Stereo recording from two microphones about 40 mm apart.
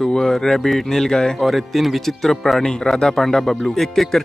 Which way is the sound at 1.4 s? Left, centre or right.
Centre.